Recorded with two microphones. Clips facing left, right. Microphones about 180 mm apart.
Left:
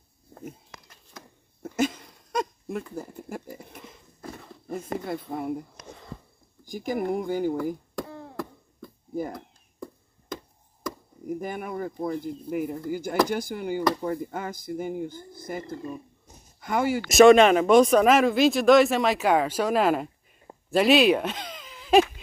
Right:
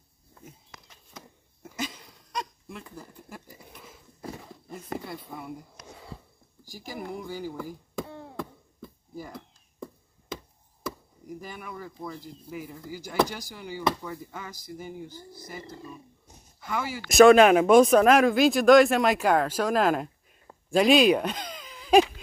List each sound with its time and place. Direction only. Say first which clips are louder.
1.8 s a sound: left 10 dB; 50° left (ahead or behind)
3.8 s a sound: even; 5° right (ahead or behind)
4.6 s speech: left 6 dB; 50° left (ahead or behind)
6.9 s speech: left 9 dB; 55° left (ahead or behind)
8.0 s chop: right 3 dB; centre (ahead or behind)
11.2 s speech: left 8 dB; 55° left (ahead or behind)
17.1 s speech: even; centre (ahead or behind)